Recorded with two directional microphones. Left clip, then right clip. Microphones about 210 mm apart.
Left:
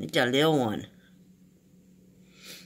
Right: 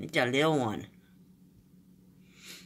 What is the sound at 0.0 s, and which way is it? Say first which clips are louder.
Speech: left 3 dB; 20° left (ahead or behind).